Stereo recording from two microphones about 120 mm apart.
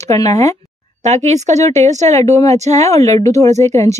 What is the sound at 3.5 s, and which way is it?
Speech, 70° right (ahead or behind).